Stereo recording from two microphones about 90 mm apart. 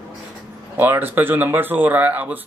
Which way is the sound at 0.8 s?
20° right (ahead or behind).